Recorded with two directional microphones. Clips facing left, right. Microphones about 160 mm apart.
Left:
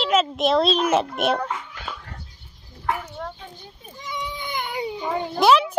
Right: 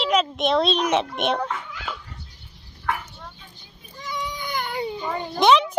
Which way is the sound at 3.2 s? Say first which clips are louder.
Left 9 dB; 85° left.